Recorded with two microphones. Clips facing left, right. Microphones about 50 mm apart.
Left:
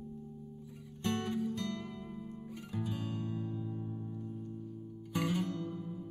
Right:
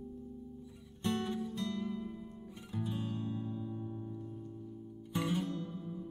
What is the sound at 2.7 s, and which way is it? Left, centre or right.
Music, centre.